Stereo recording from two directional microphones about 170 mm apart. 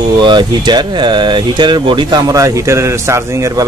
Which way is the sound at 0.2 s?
25° right (ahead or behind).